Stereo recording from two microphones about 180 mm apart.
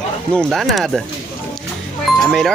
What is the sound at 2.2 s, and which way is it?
Speech, centre (ahead or behind).